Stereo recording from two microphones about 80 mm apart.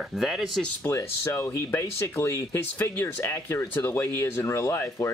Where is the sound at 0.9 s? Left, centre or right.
Left.